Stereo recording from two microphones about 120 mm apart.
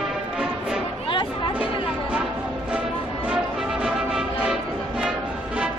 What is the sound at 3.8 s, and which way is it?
Music, 5° right (ahead or behind).